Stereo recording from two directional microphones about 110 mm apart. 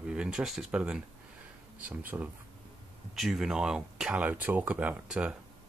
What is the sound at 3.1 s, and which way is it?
Speech, 5° right (ahead or behind).